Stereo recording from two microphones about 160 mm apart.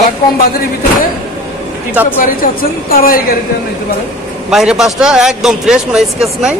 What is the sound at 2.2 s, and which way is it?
Speech, 60° left (ahead or behind).